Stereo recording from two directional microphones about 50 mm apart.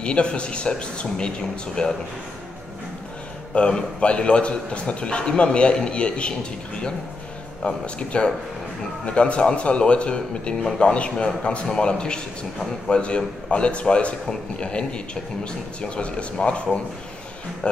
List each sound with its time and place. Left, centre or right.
0.0 s a man's voice: left
3.5 s a man's voice: left
10.6 s a man's voice: centre